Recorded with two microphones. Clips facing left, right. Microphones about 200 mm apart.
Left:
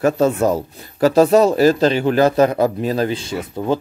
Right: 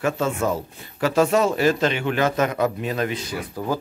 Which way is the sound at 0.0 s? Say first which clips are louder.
Left 7 dB; 40° left (ahead or behind).